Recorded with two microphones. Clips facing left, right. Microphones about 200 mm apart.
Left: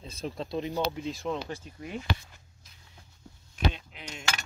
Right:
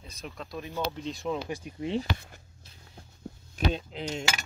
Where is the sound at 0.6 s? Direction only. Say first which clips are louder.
Left 3 dB; 15° left (ahead or behind).